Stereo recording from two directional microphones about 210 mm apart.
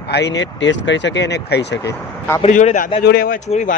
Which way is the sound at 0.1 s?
55° left (ahead or behind).